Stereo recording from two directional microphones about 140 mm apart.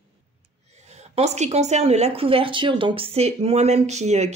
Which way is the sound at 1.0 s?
50° right (ahead or behind).